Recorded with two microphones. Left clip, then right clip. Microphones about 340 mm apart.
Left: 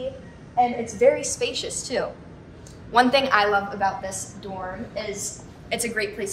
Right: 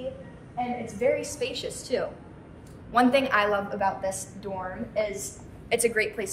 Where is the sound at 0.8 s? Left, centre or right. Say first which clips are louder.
Left 7 dB; centre.